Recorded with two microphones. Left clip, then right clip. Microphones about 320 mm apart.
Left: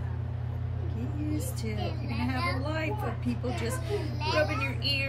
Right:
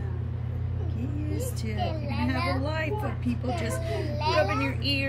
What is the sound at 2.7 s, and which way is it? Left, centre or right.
Speech, centre.